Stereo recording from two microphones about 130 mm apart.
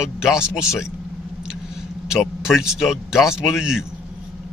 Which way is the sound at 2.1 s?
5° right (ahead or behind).